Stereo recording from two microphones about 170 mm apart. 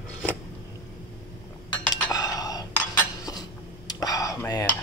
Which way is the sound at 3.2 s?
20° left (ahead or behind).